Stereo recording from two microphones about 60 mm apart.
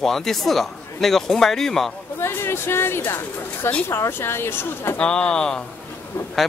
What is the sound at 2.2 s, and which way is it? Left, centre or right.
Speech, left.